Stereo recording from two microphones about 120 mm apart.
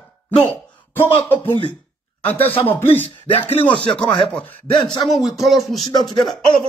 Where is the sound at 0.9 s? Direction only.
15° left (ahead or behind).